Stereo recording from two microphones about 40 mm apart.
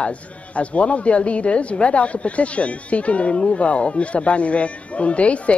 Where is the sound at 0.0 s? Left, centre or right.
Left.